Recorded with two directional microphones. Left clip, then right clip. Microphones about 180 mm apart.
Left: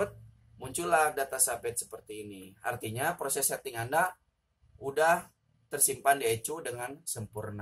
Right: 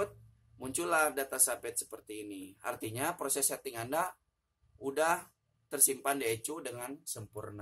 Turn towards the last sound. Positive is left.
turn(degrees=-15)  # may be behind; listen again after turning